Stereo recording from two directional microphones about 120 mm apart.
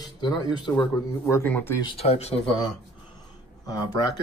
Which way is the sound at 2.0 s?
60° left (ahead or behind).